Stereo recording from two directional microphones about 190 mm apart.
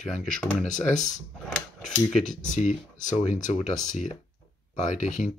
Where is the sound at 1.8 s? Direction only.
5° left (ahead or behind).